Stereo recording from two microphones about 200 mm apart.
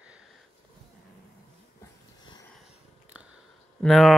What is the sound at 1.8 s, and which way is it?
Dog, 20° left (ahead or behind).